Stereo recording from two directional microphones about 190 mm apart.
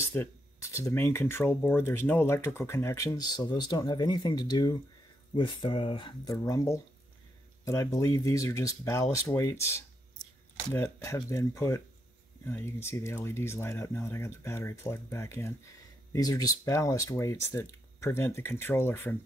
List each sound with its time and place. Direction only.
0.0 s speech: 15° left (ahead or behind)
10.7 s speech: 15° left (ahead or behind)